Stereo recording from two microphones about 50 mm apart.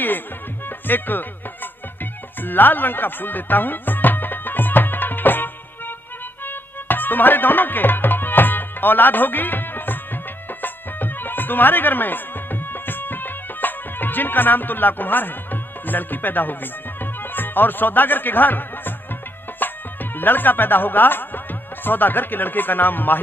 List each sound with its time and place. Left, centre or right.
0.7 s music: left
19.6 s speech: left